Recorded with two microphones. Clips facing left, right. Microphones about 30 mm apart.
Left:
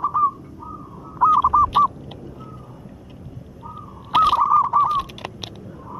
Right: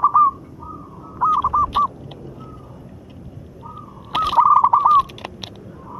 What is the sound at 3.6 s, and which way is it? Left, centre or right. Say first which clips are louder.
Crow: even; centre.